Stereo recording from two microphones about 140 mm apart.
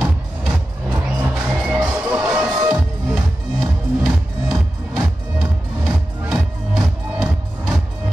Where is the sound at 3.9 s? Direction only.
5° right (ahead or behind).